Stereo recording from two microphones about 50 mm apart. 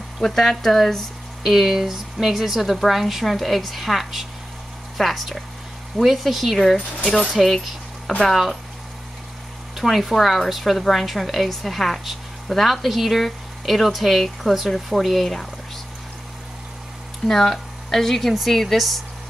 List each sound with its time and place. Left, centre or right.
0.2 s speech: centre
1.4 s speech: centre
9.8 s speech: centre
17.3 s speech: centre